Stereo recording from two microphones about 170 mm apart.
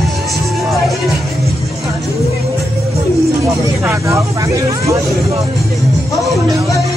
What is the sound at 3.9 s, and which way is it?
Vehicle, 15° right (ahead or behind).